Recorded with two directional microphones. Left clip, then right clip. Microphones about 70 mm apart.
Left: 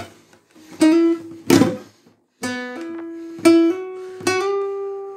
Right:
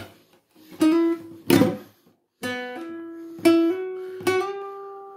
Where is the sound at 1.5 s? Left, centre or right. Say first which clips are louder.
Left 4 dB; centre.